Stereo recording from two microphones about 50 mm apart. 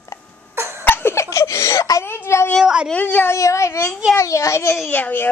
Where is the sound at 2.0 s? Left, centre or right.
Left.